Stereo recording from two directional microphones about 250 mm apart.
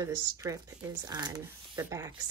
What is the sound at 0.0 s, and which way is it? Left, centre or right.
Speech, centre.